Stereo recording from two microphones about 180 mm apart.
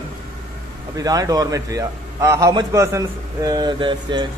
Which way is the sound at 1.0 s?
20° right (ahead or behind).